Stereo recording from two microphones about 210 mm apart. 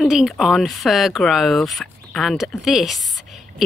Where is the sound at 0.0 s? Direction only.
Centre (ahead or behind).